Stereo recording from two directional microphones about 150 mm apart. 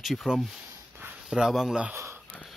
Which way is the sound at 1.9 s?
15° right (ahead or behind).